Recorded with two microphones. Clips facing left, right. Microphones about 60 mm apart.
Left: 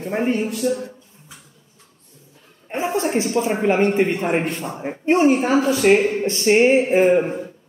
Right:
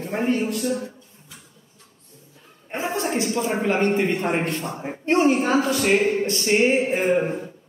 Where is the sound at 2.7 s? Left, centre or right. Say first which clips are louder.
Left 4 dB; left.